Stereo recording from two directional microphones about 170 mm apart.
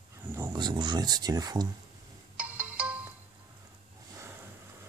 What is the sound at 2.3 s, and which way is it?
Ringtone, 10° right (ahead or behind).